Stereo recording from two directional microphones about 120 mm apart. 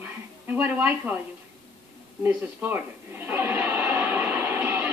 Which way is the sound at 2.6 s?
15° right (ahead or behind).